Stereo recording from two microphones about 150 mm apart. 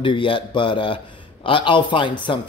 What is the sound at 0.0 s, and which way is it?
Speech, 35° left (ahead or behind).